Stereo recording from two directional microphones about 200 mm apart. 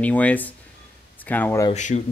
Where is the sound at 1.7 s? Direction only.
35° left (ahead or behind).